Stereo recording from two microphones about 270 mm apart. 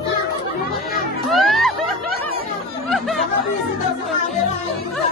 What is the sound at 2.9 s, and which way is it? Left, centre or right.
Chatter, centre.